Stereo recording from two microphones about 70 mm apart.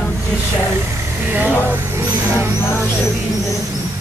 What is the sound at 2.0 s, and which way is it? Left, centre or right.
Music, right.